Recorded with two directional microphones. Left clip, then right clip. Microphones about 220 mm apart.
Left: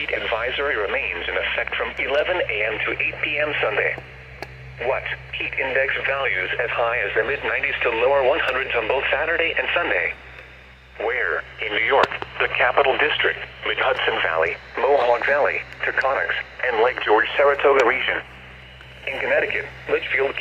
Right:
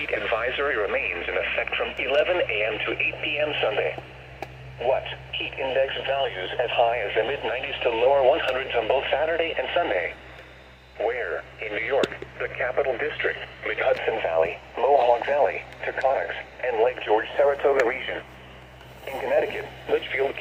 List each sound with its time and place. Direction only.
0.0 s speech: 15° left (ahead or behind)
11.0 s radio: 20° left (ahead or behind)
12.1 s speech: 35° left (ahead or behind)
13.1 s speech: 20° left (ahead or behind)
19.0 s speech: 25° left (ahead or behind)